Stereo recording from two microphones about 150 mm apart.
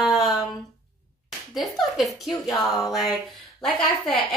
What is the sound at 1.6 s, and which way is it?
A woman's voice, centre (ahead or behind).